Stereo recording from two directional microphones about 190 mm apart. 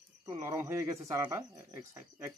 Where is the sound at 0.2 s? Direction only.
15° right (ahead or behind).